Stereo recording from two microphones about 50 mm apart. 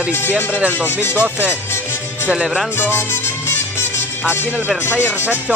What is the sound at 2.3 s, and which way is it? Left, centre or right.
Music, centre.